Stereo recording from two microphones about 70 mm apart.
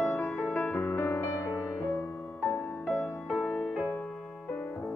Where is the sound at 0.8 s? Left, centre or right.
Left.